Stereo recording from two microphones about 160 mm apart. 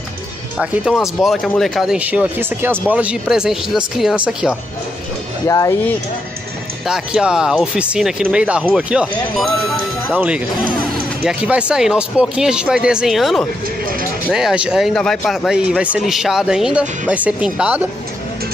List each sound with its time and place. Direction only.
0.6 s speech: 5° right (ahead or behind)
5.5 s speech: 20° left (ahead or behind)
6.9 s speech: 5° right (ahead or behind)
10.1 s speech: 10° right (ahead or behind)